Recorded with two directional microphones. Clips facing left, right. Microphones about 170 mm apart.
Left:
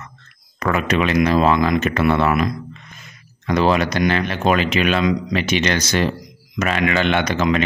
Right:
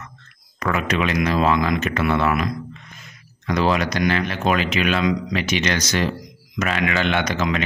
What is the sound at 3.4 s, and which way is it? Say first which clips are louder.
Speech: left 3 dB; 30° left (ahead or behind).